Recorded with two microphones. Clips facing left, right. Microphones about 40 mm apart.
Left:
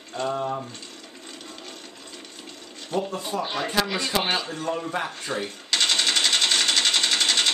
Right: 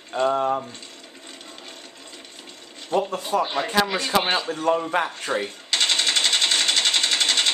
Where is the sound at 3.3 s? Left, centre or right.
Right.